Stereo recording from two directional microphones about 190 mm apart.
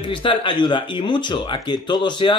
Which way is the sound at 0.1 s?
25° left (ahead or behind).